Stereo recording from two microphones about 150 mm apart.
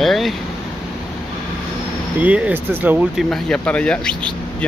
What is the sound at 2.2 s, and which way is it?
Speech, 10° right (ahead or behind).